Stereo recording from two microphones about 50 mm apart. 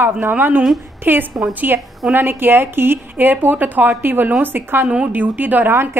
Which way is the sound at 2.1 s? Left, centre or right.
Right.